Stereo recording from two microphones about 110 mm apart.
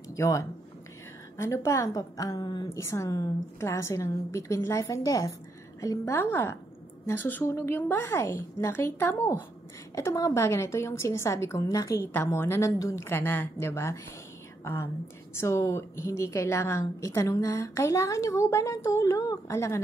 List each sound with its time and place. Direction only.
0.1 s a woman's voice: 30° left (ahead or behind)
2.7 s a woman's voice: 25° left (ahead or behind)
9.9 s a woman's voice: 30° left (ahead or behind)